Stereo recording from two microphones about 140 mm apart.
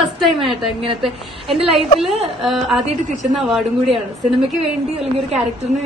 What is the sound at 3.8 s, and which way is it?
Speech, 40° right (ahead or behind).